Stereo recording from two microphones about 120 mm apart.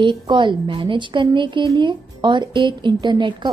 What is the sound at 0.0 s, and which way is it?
A woman's voice, 40° right (ahead or behind).